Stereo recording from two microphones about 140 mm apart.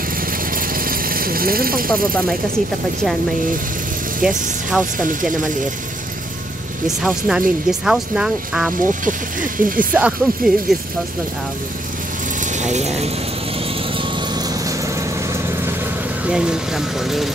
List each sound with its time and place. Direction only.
0.2 s vehicle: 85° right
4.2 s speech: 5° right (ahead or behind)
7.0 s speech: 5° right (ahead or behind)
9.0 s speech: 75° right (ahead or behind)
9.9 s speech: 5° right (ahead or behind)
12.4 s speech: 60° right (ahead or behind)
13.9 s vehicle: 30° right (ahead or behind)
16.3 s speech: 5° right (ahead or behind)